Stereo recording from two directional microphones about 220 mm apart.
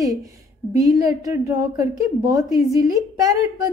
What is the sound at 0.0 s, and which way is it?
A woman's voice, 15° right (ahead or behind).